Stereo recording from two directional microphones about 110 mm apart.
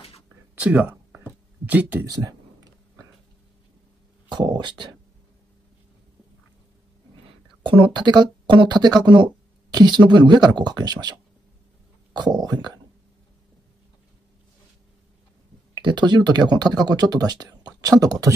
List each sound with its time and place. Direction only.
0.6 s a sound: 15° right (ahead or behind)
1.7 s speech: 15° right (ahead or behind)
2.0 s a sound: 35° right (ahead or behind)
4.3 s a woman's voice: 45° right (ahead or behind)
7.6 s a woman's voice: 45° right (ahead or behind)
15.8 s speech: 45° right (ahead or behind)